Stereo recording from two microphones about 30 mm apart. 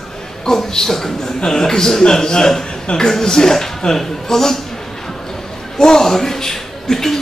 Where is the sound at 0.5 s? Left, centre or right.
Centre.